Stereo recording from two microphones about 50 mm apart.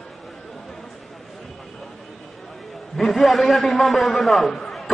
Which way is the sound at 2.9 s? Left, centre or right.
Centre.